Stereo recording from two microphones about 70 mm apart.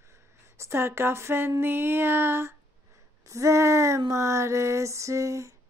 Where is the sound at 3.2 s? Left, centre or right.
Right.